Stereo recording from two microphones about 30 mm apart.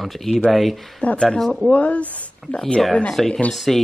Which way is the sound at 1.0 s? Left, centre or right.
Left.